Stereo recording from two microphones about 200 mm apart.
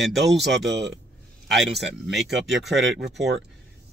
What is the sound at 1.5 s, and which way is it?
Speech, 60° right (ahead or behind).